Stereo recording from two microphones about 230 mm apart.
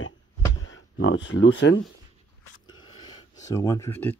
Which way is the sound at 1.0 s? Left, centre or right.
Left.